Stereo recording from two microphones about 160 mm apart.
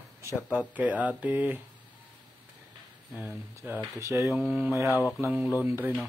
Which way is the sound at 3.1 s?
10° right (ahead or behind).